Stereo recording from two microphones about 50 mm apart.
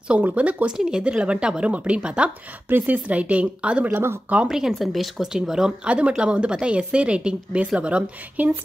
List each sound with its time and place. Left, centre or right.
0.2 s speech: right
0.7 s speech: centre
4.5 s speech: centre
5.3 s speech: centre
5.9 s speech: right
8.4 s speech: right